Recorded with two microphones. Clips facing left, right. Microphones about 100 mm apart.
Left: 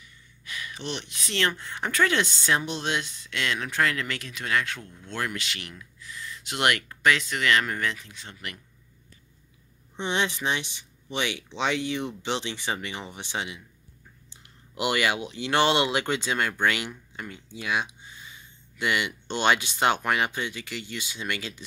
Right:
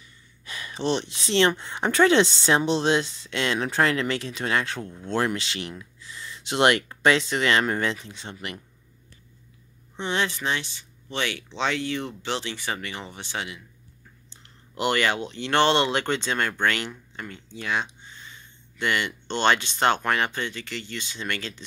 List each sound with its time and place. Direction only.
0.5 s speech: 30° right (ahead or behind)
9.9 s speech: 20° left (ahead or behind)